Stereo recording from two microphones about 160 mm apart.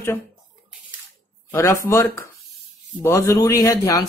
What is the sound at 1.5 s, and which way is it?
Speech, 20° left (ahead or behind).